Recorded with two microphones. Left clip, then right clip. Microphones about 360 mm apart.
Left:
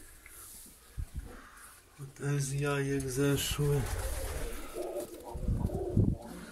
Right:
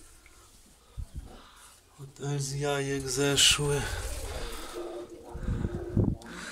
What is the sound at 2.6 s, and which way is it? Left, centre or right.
Speech, right.